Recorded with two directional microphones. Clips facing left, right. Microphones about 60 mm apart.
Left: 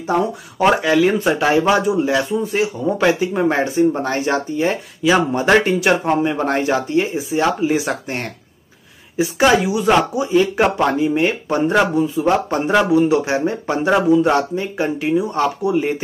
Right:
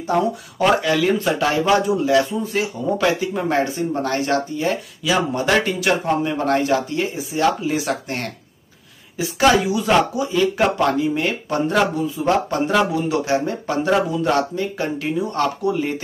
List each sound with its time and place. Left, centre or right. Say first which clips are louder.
0.0 s speech: left 1 dB; left